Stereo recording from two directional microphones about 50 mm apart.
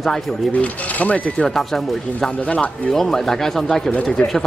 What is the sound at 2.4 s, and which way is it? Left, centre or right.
Speech, left.